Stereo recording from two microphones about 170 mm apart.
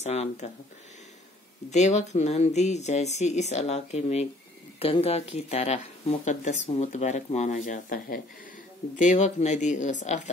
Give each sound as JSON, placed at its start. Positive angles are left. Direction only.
{"t": 0.0, "sound": "speech", "side_deg": 40}
{"t": 1.7, "sound": "speech", "side_deg": 45}